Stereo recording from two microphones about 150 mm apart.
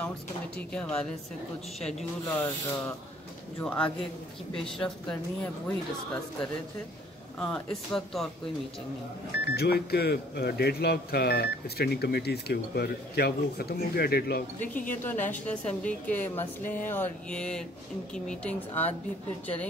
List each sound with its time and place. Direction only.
0.6 s speech: 10° left (ahead or behind)
7.3 s speech: 5° left (ahead or behind)
9.6 s speech: 90° left
15.0 s speech: 10° left (ahead or behind)